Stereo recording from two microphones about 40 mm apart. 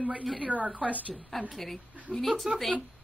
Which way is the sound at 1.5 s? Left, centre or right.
Centre.